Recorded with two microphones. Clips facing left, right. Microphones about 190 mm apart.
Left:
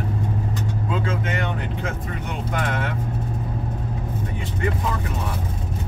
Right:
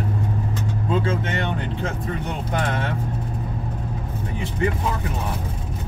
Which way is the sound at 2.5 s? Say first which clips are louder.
Right 1 dB; 30° right (ahead or behind).